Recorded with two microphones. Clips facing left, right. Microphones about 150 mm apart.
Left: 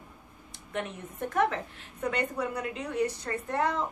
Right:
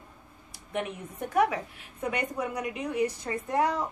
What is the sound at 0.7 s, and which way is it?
A woman's voice, 10° right (ahead or behind).